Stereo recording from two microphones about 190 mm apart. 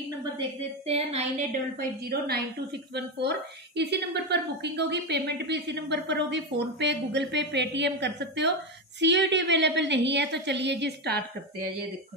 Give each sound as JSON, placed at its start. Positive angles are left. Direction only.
{"t": 0.2, "sound": "a woman's voice", "side_deg": -25}
{"t": 2.0, "sound": "a woman's voice", "side_deg": -55}